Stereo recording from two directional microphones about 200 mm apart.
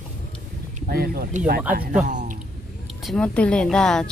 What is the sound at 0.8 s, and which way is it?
Speech, 50° right (ahead or behind).